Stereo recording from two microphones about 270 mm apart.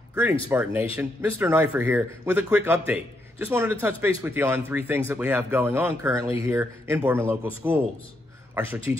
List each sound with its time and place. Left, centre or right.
0.1 s speech: centre
8.5 s speech: centre